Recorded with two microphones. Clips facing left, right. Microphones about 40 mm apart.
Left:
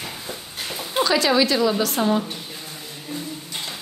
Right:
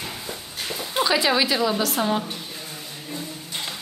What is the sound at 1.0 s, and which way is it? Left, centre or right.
A woman's voice, centre.